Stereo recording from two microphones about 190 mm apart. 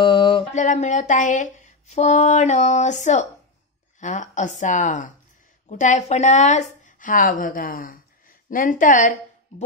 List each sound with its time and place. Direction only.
0.0 s mantra: 25° left (ahead or behind)
0.6 s a sound: 40° left (ahead or behind)
5.7 s a woman's voice: 40° left (ahead or behind)